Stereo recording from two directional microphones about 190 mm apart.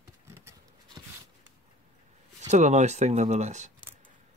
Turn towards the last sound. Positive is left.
turn(degrees=-35)  # may be behind; listen again after turning